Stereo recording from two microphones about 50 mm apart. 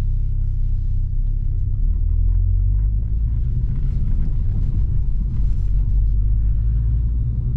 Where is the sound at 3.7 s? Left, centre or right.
Centre.